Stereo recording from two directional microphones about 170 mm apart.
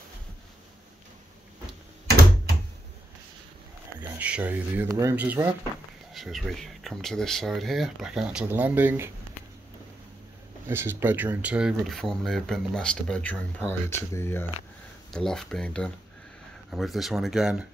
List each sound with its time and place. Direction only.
4.2 s speech: 10° right (ahead or behind)
10.7 s speech: 15° right (ahead or behind); by 14.4 s 15° left (ahead or behind)
15.1 s speech: 5° left (ahead or behind)